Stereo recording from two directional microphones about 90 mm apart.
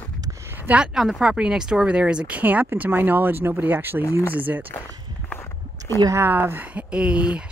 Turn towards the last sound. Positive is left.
turn(degrees=-10)  # may be behind; listen again after turning